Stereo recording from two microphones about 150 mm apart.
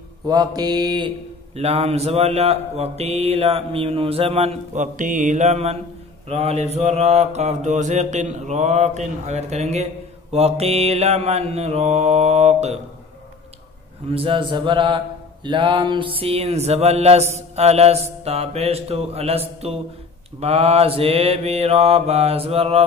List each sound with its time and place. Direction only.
0.3 s mantra: 25° right (ahead or behind)
1.5 s mantra: 45° right (ahead or behind)
4.9 s mantra: 60° right (ahead or behind)
14.1 s mantra: 35° right (ahead or behind)